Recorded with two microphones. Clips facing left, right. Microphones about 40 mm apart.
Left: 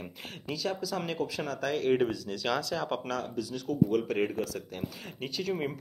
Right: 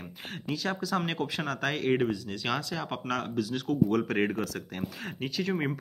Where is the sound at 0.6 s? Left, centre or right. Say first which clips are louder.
Right 2 dB; right.